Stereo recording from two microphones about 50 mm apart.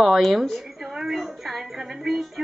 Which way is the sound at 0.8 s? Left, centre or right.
Centre.